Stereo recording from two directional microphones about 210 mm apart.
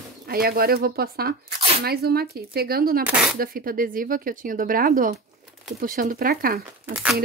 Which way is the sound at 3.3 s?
45° right (ahead or behind).